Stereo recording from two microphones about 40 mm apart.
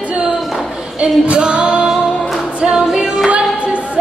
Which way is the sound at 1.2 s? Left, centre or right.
Right.